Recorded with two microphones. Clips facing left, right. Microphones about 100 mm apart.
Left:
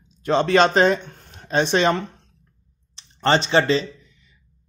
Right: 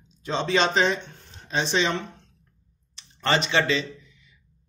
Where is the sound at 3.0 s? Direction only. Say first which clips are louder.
Left 5 dB; 35° left (ahead or behind).